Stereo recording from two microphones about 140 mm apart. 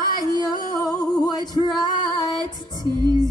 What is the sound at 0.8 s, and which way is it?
Music, 25° left (ahead or behind).